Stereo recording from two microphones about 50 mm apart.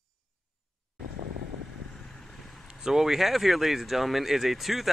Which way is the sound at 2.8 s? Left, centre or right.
Centre.